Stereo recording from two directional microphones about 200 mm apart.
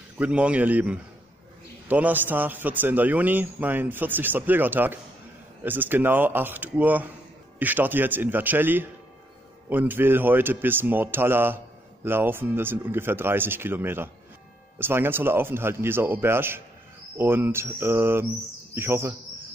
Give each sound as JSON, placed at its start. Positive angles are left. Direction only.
{"t": 0.2, "sound": "speech", "side_deg": -5}